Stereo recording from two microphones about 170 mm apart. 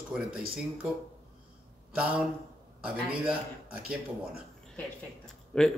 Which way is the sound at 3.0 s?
10° right (ahead or behind).